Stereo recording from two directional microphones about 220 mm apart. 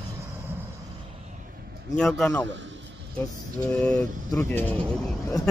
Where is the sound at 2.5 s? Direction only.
55° right (ahead or behind).